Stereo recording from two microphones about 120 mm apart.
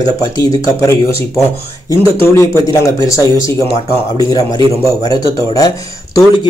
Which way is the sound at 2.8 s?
30° left (ahead or behind).